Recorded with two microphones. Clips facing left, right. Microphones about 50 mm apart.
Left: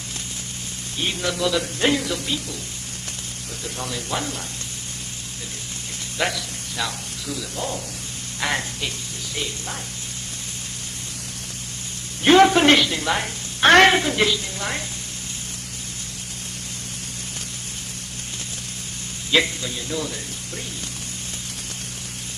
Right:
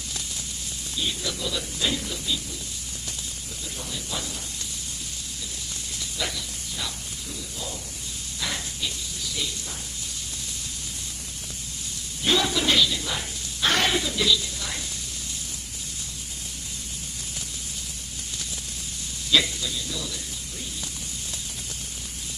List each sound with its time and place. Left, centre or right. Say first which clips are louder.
0.9 s speech: left 6 dB; left
3.7 s speech: left 7 dB; left
6.1 s a sound: left 8 dB; left
7.5 s speech: left 8 dB; left
12.2 s a woman's voice: left 10 dB; left
19.3 s speech: left 3 dB; left